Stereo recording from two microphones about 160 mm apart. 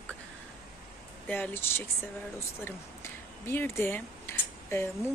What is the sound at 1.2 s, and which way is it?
Speech, 10° left (ahead or behind).